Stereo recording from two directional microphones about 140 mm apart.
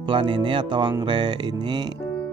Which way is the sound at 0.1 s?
35° right (ahead or behind).